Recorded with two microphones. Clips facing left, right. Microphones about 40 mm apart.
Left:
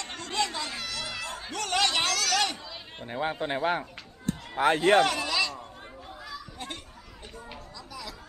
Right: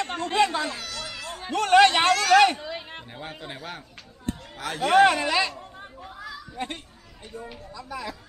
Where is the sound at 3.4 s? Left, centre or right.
Left.